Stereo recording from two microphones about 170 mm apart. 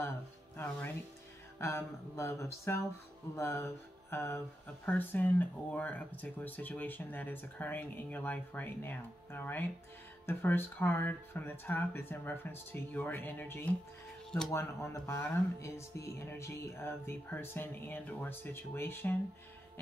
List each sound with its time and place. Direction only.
0.6 s speech: 10° left (ahead or behind)